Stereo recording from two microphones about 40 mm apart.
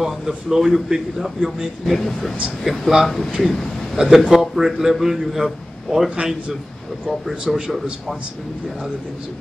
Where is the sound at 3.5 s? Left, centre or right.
Centre.